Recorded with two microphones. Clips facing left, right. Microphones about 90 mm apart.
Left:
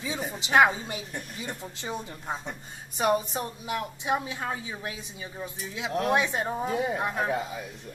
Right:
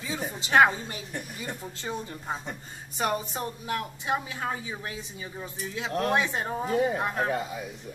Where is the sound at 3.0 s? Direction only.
20° left (ahead or behind).